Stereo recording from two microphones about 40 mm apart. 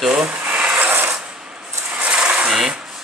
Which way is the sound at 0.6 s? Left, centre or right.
Right.